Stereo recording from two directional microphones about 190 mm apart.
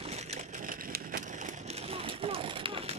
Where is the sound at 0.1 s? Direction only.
35° right (ahead or behind).